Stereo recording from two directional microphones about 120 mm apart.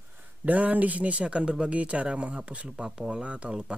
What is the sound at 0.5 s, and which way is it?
Speech, 15° right (ahead or behind).